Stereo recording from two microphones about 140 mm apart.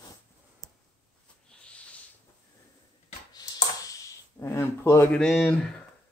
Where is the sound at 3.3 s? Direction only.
25° left (ahead or behind).